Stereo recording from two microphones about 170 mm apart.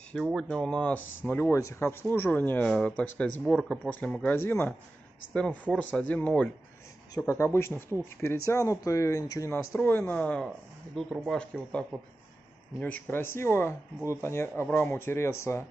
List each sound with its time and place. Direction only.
0.1 s speech: centre (ahead or behind)
12.8 s speech: 10° left (ahead or behind)
13.9 s speech: 10° right (ahead or behind)
14.2 s speech: 15° left (ahead or behind)